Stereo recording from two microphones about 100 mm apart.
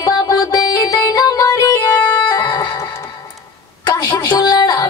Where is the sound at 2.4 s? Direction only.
50° left (ahead or behind).